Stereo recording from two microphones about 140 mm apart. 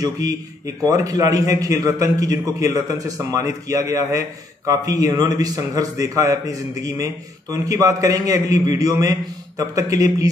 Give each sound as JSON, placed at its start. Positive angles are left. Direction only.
{"t": 0.0, "sound": "a man's voice", "side_deg": -25}